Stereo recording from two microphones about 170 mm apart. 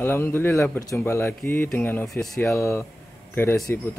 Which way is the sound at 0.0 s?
10° left (ahead or behind).